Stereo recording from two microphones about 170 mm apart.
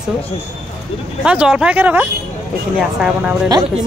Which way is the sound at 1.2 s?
5° right (ahead or behind).